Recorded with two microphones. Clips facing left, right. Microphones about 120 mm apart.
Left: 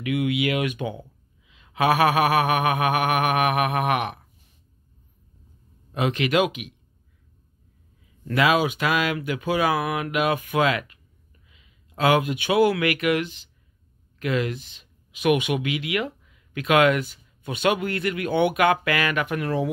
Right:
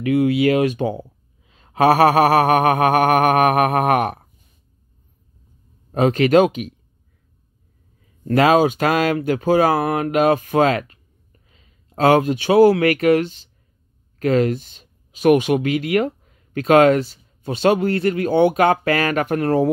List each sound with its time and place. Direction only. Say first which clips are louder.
0.0 s speech: right 8 dB; 35° right (ahead or behind)
5.9 s speech: right 8 dB; 40° right (ahead or behind)
8.3 s speech: right 6 dB; 40° right (ahead or behind)